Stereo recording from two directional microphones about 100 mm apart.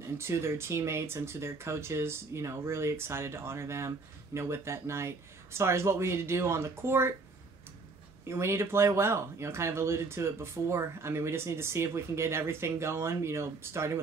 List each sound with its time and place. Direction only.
0.2 s speech: 25° right (ahead or behind)
8.3 s speech: 25° right (ahead or behind)